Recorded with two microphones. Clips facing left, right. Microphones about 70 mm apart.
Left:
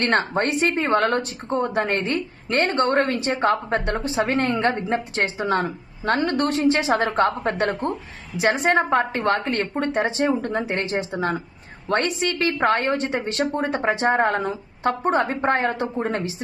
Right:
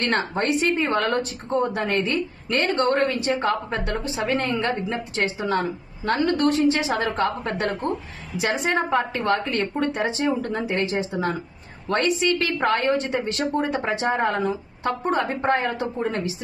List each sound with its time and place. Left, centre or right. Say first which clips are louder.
0.0 s speech: left 2 dB; left